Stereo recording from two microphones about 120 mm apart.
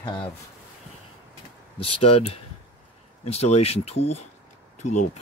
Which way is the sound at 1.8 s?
55° left (ahead or behind).